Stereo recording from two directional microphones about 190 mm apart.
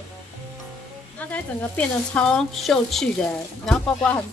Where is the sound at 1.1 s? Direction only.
5° left (ahead or behind).